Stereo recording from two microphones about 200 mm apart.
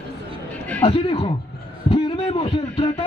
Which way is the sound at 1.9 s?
30° left (ahead or behind).